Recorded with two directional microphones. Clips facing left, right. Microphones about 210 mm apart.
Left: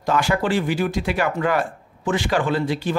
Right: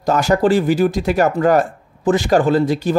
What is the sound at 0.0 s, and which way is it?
Speech, 40° right (ahead or behind).